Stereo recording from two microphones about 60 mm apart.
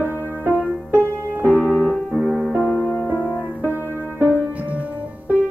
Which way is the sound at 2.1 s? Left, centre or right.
Right.